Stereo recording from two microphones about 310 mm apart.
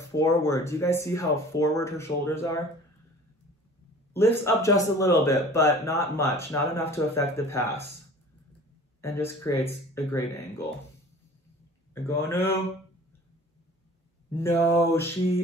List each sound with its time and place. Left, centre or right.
0.1 s speech: centre
4.1 s speech: centre
9.0 s speech: centre
11.9 s speech: centre
14.3 s speech: centre